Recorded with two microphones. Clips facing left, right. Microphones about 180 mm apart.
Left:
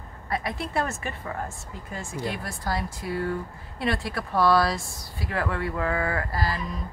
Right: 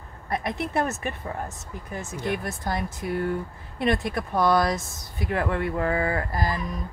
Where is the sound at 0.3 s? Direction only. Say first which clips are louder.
Right 2 dB; 20° right (ahead or behind).